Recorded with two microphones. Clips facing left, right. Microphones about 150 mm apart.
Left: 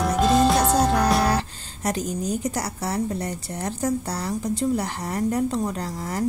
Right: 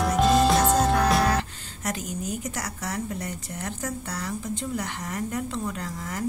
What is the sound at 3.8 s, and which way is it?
A woman's voice, 35° left (ahead or behind).